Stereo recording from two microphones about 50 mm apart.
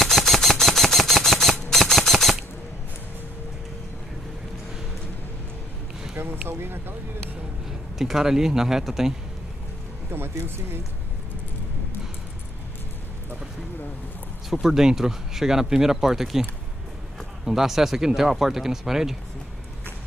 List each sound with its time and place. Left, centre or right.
0.0 s a sound: centre
6.1 s a sound: right
8.0 s speech: centre
10.1 s speech: right
14.5 s speech: centre
17.5 s speech: centre